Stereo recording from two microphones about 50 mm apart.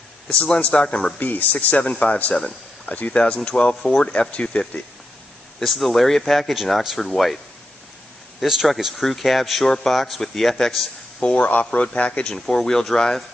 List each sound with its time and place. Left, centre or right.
0.6 s speech: left
1.2 s speech: left
5.6 s speech: centre
6.5 s speech: centre
8.4 s speech: centre
11.1 s speech: left